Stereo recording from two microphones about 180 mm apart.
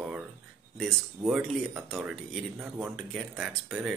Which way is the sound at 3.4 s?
Centre (ahead or behind).